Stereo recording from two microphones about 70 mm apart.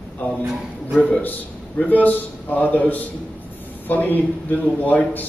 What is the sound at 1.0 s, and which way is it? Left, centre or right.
A man's voice, left.